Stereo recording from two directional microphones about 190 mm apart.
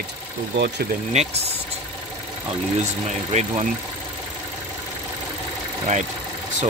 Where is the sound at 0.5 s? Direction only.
65° right (ahead or behind).